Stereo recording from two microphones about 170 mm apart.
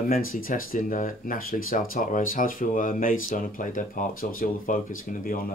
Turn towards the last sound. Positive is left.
turn(degrees=55)  # may be behind; listen again after turning